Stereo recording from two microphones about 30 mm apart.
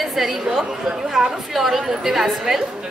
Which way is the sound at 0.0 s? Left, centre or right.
Centre.